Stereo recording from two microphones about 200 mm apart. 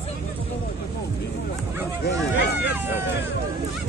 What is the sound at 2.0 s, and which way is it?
Speech, 55° left (ahead or behind).